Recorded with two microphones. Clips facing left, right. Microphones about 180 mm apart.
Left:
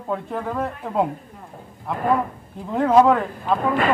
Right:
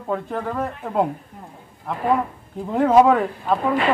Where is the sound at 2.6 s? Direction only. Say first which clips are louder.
Right 1 dB; 10° right (ahead or behind).